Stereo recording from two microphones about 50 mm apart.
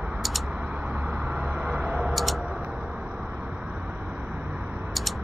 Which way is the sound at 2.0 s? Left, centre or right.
Centre.